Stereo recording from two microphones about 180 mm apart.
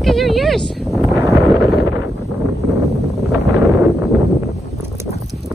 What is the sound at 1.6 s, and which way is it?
Wind noise, 10° right (ahead or behind).